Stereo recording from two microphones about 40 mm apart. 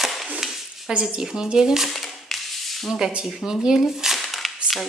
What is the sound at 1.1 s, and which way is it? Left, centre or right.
Speech, centre.